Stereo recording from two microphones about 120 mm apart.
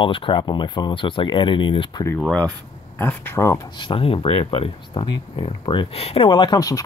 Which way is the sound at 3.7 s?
45° left (ahead or behind).